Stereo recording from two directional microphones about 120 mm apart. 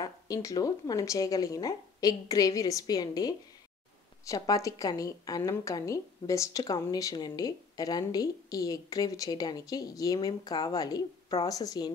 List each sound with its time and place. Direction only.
0.0 s a woman's voice: 30° left (ahead or behind)